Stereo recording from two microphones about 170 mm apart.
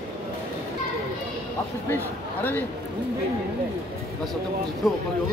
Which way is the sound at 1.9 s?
10° left (ahead or behind).